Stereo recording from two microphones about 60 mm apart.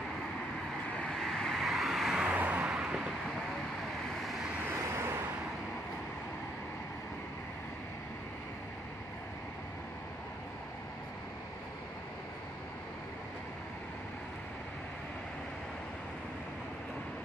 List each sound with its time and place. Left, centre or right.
1.0 s vehicle: centre
2.2 s vehicle: right
2.7 s vehicle: centre
4.2 s vehicle: centre
4.6 s vehicle: right